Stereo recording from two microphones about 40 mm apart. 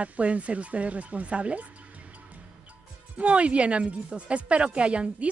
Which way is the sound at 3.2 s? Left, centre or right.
Right.